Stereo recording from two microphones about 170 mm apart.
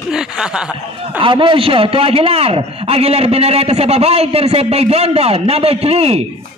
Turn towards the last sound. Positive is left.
turn(degrees=-35)  # may be behind; listen again after turning